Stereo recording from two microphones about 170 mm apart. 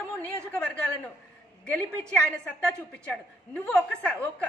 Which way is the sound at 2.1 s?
5° left (ahead or behind).